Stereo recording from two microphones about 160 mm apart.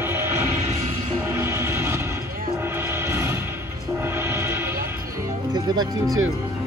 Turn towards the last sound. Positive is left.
turn(degrees=-25)  # may be behind; listen again after turning